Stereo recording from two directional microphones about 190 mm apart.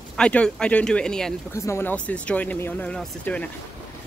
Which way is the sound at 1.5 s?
15° left (ahead or behind).